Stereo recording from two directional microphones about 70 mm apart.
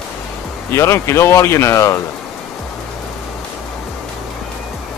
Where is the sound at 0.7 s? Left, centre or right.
Left.